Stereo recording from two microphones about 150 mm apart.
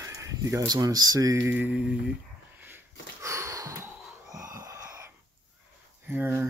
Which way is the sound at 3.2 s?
20° right (ahead or behind).